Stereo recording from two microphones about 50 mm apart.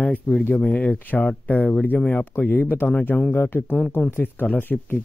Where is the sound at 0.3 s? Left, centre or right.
Centre.